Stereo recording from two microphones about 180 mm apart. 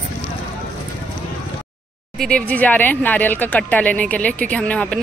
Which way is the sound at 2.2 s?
5° left (ahead or behind).